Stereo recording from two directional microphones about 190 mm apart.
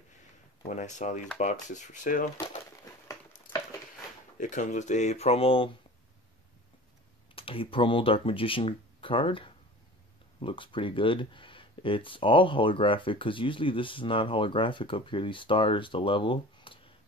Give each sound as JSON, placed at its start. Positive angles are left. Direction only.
{"t": 0.7, "sound": "speech", "side_deg": 40}
{"t": 4.4, "sound": "speech", "side_deg": 40}
{"t": 7.3, "sound": "speech", "side_deg": 30}